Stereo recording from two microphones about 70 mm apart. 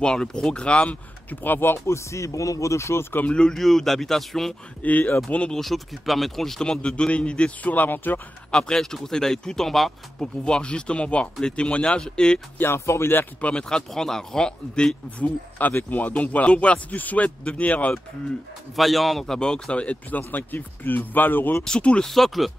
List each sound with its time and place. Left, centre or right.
0.0 s speech: centre; by 3.3 s left
3.3 s speech: centre
4.8 s speech: left
5.6 s speech: centre; by 8.2 s left
8.5 s speech: centre
10.4 s speech: centre
12.5 s speech: left
13.4 s speech: centre
15.5 s speech: left
18.8 s speech: centre; by 21.5 s left
21.5 s speech: centre
22.1 s speech: centre